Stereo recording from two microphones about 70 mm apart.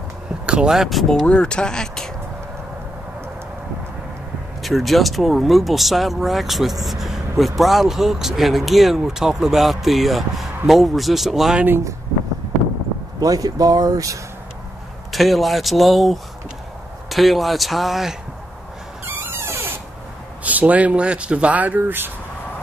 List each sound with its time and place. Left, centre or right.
0.5 s speech: centre
1.2 s speech: centre
4.6 s speech: centre
13.2 s speech: right
15.1 s speech: centre
19.0 s a sound: right
20.4 s speech: right